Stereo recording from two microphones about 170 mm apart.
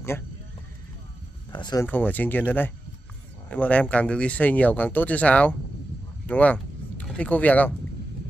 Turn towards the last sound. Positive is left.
turn(degrees=10)  # may be behind; listen again after turning